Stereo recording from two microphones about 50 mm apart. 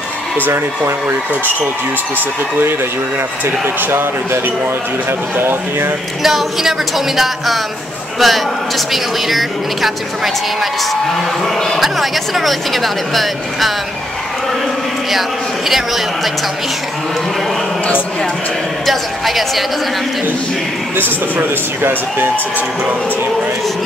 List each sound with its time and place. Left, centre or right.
3.4 s speech: right
5.4 s speech: right
6.2 s speech: centre
18.9 s speech: centre
21.4 s speech: right